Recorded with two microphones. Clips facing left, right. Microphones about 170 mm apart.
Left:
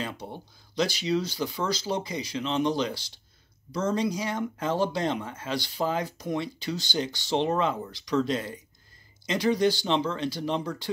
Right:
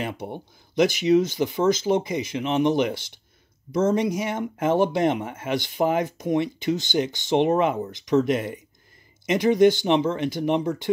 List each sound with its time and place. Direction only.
0.0 s speech: 20° right (ahead or behind)